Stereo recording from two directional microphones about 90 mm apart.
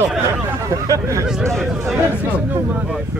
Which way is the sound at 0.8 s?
35° right (ahead or behind).